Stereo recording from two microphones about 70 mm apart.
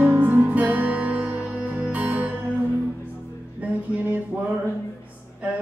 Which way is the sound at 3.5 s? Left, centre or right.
Right.